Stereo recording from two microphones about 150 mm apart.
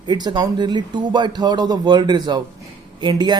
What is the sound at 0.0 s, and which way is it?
Speech, 30° right (ahead or behind).